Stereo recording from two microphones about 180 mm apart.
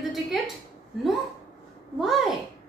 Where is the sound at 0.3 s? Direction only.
Centre (ahead or behind).